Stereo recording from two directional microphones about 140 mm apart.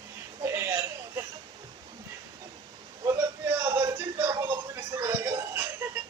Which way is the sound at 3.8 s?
20° right (ahead or behind).